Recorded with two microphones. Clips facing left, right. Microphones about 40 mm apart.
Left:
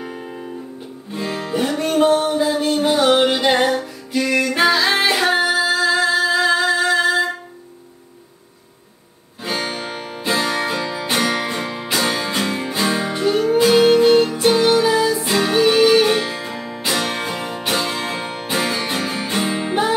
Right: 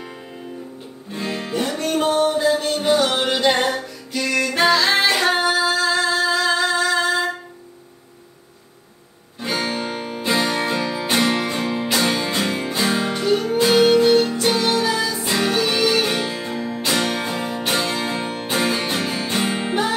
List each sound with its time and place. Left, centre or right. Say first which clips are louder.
1.1 s music: left 2 dB; centre
1.6 s music: left 5 dB; centre
9.4 s music: right 1 dB; centre
11.2 s music: even; centre
19.4 s music: left 1 dB; centre